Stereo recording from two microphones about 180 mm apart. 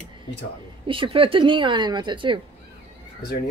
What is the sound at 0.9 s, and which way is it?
A woman's voice, 30° right (ahead or behind).